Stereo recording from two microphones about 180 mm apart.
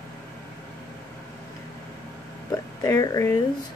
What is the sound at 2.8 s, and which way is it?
Speech, 15° left (ahead or behind).